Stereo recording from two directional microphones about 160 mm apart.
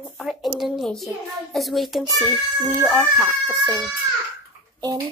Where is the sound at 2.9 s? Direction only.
5° right (ahead or behind).